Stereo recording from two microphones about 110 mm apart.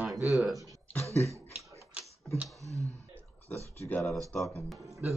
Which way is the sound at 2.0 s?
15° right (ahead or behind).